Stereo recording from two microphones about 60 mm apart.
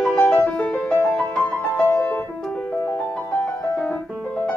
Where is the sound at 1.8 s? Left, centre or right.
Left.